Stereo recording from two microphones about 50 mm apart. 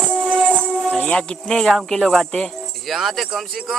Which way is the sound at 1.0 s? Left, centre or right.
Centre.